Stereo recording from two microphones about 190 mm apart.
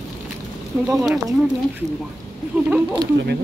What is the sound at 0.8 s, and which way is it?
Speech, centre (ahead or behind).